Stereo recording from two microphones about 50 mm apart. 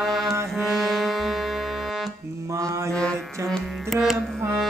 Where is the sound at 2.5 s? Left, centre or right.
Right.